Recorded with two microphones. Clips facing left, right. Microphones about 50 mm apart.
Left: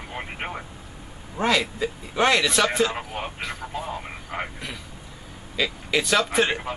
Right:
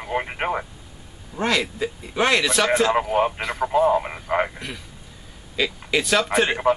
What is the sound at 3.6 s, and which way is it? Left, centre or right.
Radio, right.